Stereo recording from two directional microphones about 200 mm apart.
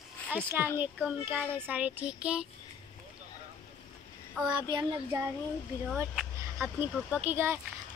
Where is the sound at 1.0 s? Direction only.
10° right (ahead or behind).